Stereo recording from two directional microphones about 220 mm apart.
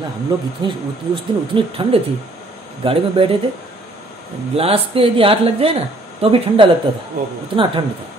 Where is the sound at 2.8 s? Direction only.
25° right (ahead or behind).